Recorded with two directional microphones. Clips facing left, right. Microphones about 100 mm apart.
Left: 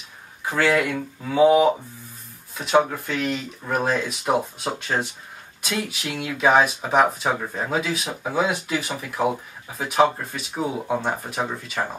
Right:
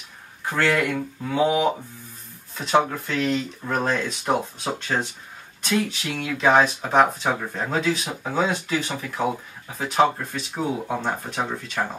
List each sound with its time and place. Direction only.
0.5 s speech: 10° left (ahead or behind)